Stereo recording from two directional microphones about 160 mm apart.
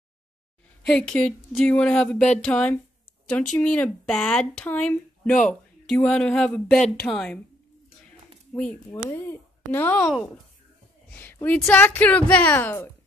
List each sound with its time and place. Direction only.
0.8 s a woman's voice: 5° left (ahead or behind)
8.9 s a woman's voice: 15° left (ahead or behind)
11.1 s a woman's voice: 10° left (ahead or behind)